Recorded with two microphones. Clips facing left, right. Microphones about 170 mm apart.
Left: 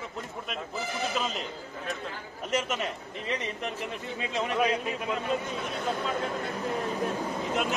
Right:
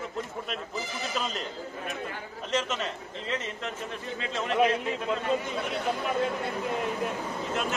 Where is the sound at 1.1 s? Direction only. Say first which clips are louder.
Right 2 dB; centre (ahead or behind).